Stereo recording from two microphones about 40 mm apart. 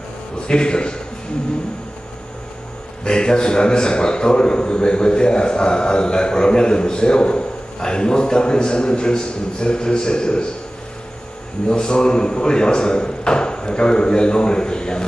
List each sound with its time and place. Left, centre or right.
0.5 s a man's voice: left
3.0 s a man's voice: left
11.7 s speech: centre